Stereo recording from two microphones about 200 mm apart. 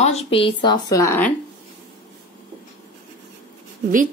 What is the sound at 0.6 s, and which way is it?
Speech, 20° left (ahead or behind).